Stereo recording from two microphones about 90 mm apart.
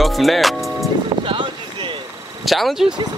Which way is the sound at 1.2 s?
70° right (ahead or behind).